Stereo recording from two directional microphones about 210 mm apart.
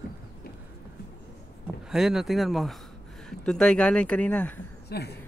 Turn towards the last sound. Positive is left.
turn(degrees=50)  # may be behind; listen again after turning